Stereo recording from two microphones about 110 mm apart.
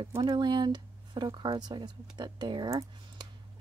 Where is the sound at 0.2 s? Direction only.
45° right (ahead or behind).